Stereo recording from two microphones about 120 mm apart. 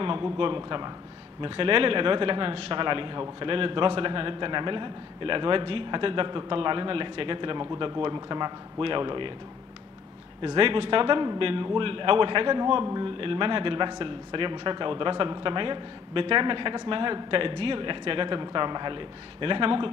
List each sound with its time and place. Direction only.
0.0 s speech: 45° right (ahead or behind)
10.4 s speech: 45° right (ahead or behind)